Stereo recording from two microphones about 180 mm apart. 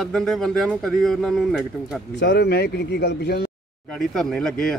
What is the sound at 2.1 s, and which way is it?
Speech, 75° left (ahead or behind).